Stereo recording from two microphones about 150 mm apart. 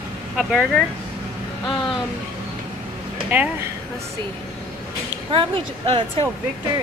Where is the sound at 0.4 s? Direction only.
Centre (ahead or behind).